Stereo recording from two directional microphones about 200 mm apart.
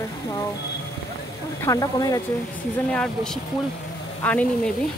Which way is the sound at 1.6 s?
15° left (ahead or behind).